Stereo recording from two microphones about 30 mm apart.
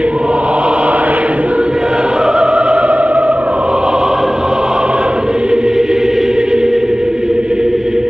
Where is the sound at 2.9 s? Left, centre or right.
Right.